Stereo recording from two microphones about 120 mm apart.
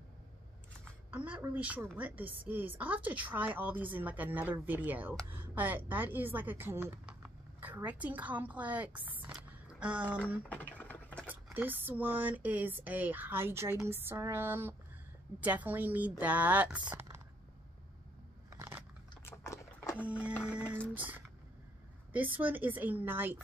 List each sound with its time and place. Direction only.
1.1 s a woman's voice: 15° right (ahead or behind)
9.3 s a sound: 5° right (ahead or behind)
10.5 s typing: 15° left (ahead or behind)
11.5 s a woman's voice: 15° right (ahead or behind)
13.8 s a sound: 20° right (ahead or behind)
15.4 s a woman's voice: 15° right (ahead or behind)
18.5 s a sound: 20° right (ahead or behind)
19.2 s biting: 25° left (ahead or behind)
20.0 s a woman's voice: 10° right (ahead or behind)
20.4 s music: 10° right (ahead or behind)
22.4 s a woman's voice: 15° right (ahead or behind)